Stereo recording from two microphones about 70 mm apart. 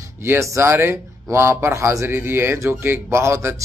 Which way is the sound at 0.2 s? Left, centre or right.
Right.